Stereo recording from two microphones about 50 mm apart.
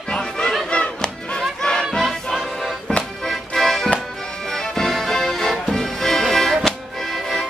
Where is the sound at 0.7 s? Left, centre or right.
Centre.